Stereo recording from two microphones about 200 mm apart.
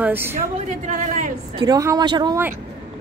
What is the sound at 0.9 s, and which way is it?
Speech, 40° right (ahead or behind).